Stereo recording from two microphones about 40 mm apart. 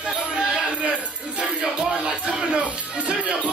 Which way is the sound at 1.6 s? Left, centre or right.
Centre.